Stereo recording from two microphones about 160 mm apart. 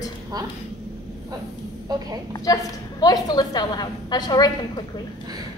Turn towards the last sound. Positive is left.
turn(degrees=25)  # may be behind; listen again after turning